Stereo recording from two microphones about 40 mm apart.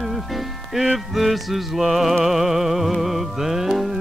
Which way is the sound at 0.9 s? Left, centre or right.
Centre.